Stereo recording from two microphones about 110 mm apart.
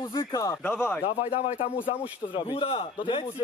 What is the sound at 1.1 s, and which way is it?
Speech, 65° left (ahead or behind).